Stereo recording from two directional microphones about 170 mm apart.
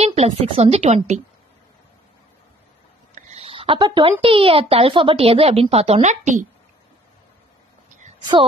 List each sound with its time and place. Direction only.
0.0 s speech: 40° right (ahead or behind)
3.2 s speech: 40° right (ahead or behind)